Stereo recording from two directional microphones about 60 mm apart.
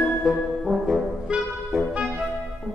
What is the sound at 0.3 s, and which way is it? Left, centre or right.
Brass instrument, centre.